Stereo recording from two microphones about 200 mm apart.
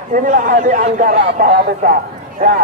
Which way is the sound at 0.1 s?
40° right (ahead or behind).